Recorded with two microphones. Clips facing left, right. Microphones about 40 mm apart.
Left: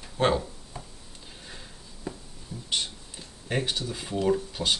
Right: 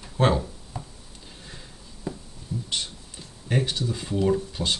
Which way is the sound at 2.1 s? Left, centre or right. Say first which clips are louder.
Right 4 dB; centre.